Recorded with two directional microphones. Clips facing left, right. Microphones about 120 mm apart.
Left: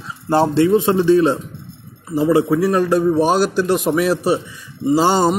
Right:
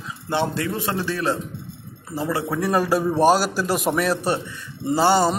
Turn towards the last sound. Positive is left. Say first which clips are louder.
# left 3 dB
turn(degrees=15)  # may be behind; listen again after turning